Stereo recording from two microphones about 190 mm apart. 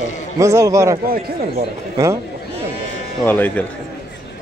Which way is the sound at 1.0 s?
50° right (ahead or behind).